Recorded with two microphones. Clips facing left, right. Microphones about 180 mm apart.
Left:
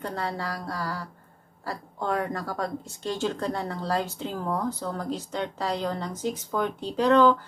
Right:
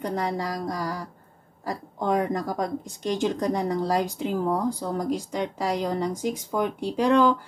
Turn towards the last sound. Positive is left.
turn(degrees=-10)  # may be behind; listen again after turning